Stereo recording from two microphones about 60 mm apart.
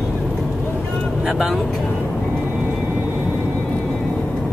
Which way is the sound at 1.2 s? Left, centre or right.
Centre.